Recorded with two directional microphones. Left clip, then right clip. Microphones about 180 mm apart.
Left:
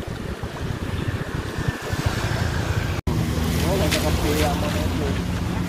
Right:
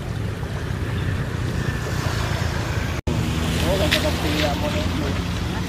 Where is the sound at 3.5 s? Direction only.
65° left (ahead or behind).